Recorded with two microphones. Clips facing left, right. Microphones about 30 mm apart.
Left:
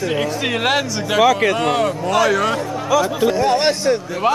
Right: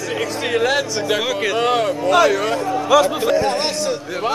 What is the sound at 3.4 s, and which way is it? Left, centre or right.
Speech, left.